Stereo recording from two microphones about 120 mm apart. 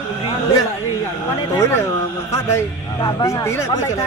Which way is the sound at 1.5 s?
25° left (ahead or behind).